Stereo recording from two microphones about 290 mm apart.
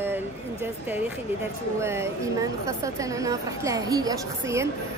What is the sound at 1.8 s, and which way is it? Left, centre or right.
A woman's voice, centre.